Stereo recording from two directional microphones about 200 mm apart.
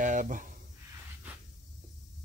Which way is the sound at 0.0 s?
40° right (ahead or behind).